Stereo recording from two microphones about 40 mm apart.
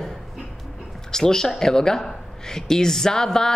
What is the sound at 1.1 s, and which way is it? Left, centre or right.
A man's voice, centre.